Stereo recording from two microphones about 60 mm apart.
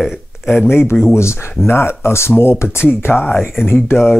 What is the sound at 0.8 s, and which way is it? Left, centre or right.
Speech, left.